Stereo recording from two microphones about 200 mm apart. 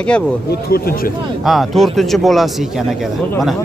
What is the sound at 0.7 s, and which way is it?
Speech, 50° left (ahead or behind).